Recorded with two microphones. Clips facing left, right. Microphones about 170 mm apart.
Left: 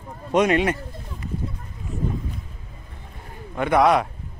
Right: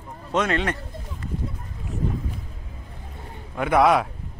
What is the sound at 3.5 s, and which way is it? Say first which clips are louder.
Speech: left 1 dB; 5° right (ahead or behind).